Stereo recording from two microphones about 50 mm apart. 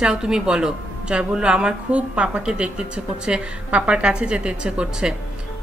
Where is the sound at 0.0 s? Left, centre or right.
Centre.